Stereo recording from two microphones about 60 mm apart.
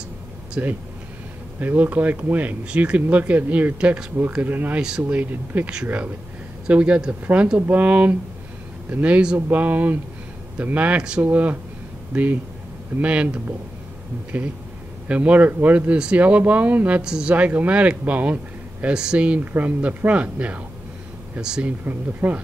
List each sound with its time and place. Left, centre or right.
0.6 s speech: right
4.8 s speech: centre
5.2 s speech: right
6.7 s speech: centre
15.0 s speech: right
17.0 s speech: centre
21.8 s speech: right